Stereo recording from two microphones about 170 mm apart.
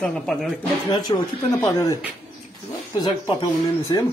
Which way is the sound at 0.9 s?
20° left (ahead or behind).